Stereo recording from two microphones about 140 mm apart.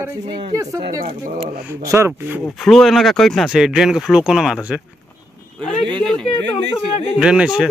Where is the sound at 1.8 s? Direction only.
20° right (ahead or behind).